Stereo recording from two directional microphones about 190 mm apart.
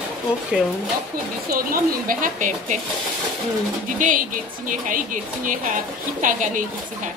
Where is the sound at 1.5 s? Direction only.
50° right (ahead or behind).